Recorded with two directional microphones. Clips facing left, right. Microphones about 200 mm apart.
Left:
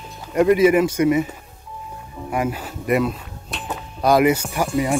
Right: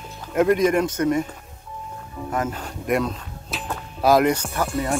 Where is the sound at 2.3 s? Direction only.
10° left (ahead or behind).